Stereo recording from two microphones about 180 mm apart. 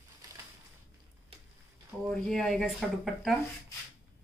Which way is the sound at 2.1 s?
5° left (ahead or behind).